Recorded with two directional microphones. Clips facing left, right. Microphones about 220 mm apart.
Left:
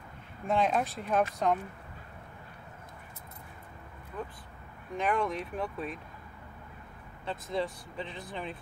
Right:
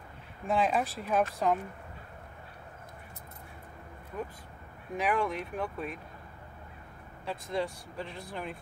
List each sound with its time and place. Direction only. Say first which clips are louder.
0.5 s speech: even; 5° right (ahead or behind)
4.9 s speech: even; 5° right (ahead or behind)
7.2 s speech: even; centre (ahead or behind)